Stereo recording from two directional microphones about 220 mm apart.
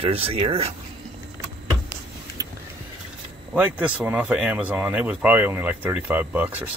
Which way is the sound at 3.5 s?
10° right (ahead or behind).